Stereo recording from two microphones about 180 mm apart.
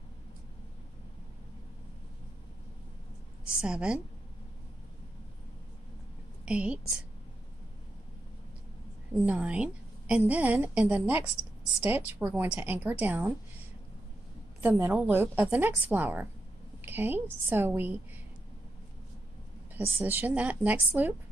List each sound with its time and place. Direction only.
3.6 s a woman's voice: 5° right (ahead or behind)
6.4 s a woman's voice: 5° right (ahead or behind)
9.2 s a woman's voice: 10° right (ahead or behind)
14.6 s a woman's voice: 10° right (ahead or behind)
19.7 s a woman's voice: 10° right (ahead or behind)